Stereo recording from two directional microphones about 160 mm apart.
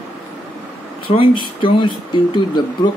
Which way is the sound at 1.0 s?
35° left (ahead or behind).